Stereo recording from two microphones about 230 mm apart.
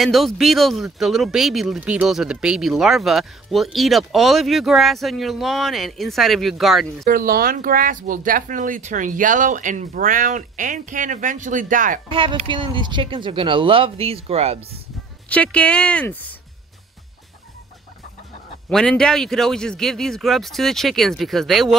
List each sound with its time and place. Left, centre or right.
0.0 s speech: centre
7.1 s speech: right
12.1 s speech: right
15.2 s speech: centre
18.7 s speech: centre